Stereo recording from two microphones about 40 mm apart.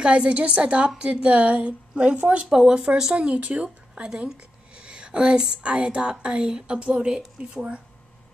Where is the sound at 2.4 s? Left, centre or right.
Centre.